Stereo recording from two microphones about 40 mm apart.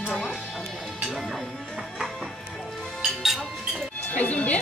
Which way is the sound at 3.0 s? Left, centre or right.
Centre.